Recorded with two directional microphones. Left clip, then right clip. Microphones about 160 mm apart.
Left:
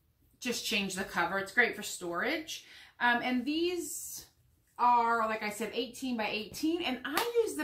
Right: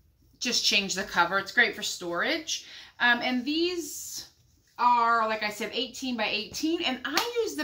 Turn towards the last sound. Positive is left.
turn(degrees=0)  # may be behind; listen again after turning